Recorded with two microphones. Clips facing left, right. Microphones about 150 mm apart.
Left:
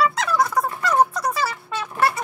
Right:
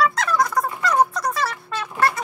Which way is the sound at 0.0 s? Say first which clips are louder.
Even; 5° left (ahead or behind).